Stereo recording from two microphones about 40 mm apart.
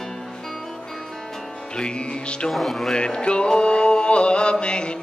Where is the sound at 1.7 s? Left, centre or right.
Left.